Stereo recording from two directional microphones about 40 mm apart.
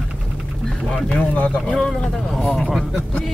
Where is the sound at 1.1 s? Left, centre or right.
Left.